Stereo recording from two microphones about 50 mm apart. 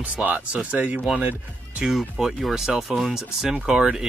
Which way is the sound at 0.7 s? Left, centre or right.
Right.